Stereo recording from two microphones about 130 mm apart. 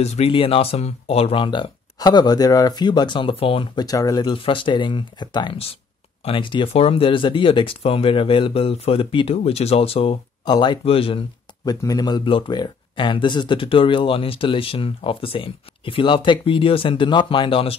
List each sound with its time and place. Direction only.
0.0 s speech: 55° left (ahead or behind)
3.8 s speech: 30° left (ahead or behind); by 10.1 s 50° left (ahead or behind)
10.4 s speech: 35° left (ahead or behind)
11.6 s speech: 30° left (ahead or behind)